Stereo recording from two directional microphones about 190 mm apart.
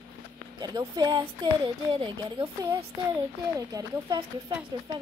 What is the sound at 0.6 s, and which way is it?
Speech, 20° right (ahead or behind).